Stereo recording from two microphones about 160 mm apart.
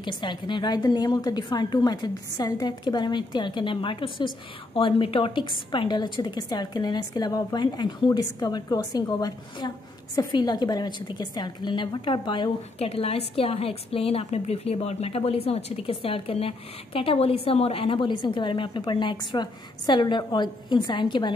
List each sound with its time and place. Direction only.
0.0 s a woman's voice: 30° left (ahead or behind)